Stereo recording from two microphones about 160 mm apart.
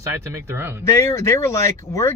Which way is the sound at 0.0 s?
15° right (ahead or behind).